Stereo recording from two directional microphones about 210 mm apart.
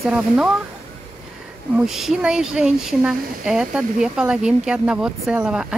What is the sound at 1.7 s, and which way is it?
Speech, centre (ahead or behind).